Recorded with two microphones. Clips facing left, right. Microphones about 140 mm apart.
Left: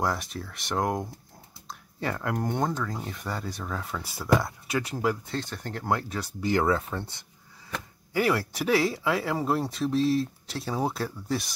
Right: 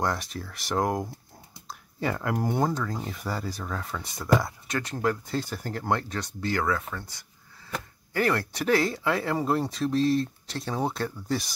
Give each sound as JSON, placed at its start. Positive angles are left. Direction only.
{"t": 0.0, "sound": "speech", "side_deg": 0}
{"t": 5.3, "sound": "speech", "side_deg": -5}
{"t": 6.4, "sound": "speech", "side_deg": 25}
{"t": 8.1, "sound": "speech", "side_deg": 5}